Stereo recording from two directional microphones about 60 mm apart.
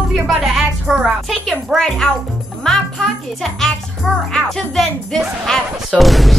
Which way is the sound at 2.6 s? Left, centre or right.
Centre.